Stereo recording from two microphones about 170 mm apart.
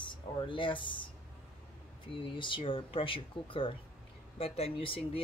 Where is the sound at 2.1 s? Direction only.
30° left (ahead or behind).